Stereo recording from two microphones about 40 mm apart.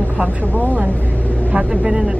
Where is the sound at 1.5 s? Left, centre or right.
Right.